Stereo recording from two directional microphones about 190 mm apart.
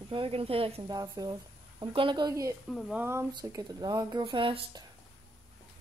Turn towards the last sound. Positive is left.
turn(degrees=-25)  # may be behind; listen again after turning